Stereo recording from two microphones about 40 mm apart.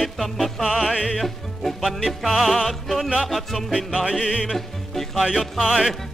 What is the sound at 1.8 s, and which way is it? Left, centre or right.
Music, centre.